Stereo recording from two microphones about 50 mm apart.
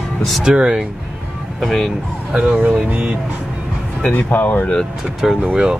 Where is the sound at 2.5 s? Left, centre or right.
Right.